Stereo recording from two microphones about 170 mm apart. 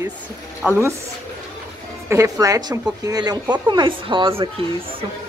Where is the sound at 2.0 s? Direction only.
20° right (ahead or behind).